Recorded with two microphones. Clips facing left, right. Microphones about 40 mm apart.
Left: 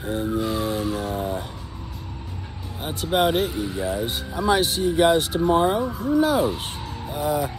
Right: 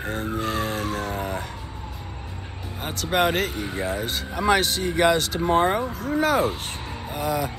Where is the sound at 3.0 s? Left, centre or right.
Right.